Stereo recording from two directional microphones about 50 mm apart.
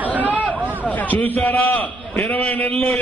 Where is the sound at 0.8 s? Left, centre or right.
Left.